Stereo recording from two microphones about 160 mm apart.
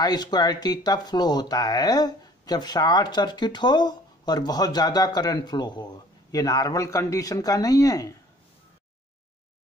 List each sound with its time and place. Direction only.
0.0 s speech: 25° left (ahead or behind)